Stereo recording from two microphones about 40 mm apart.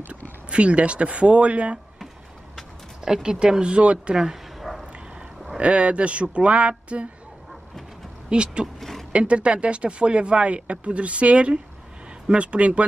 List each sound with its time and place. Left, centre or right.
0.5 s speech: right
3.1 s speech: centre
4.6 s dog: centre
5.6 s speech: right
8.3 s speech: right
8.7 s a sound: centre
9.1 s speech: right